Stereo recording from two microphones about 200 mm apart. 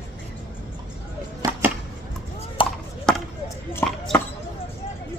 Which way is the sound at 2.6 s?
25° left (ahead or behind).